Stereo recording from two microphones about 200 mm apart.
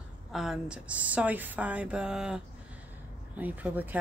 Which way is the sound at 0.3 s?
Centre (ahead or behind).